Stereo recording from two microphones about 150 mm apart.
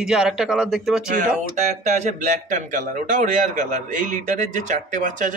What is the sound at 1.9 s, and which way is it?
A man's voice, 50° right (ahead or behind).